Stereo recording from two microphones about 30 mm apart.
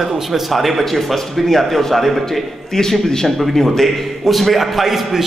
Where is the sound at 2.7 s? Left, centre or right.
Centre.